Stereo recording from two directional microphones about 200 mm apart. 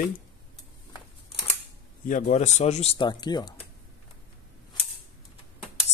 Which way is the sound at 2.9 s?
20° left (ahead or behind).